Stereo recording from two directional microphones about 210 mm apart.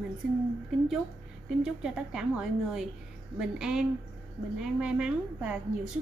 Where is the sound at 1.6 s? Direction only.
5° right (ahead or behind).